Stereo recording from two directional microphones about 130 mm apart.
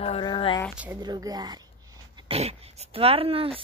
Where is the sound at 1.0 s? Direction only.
30° right (ahead or behind).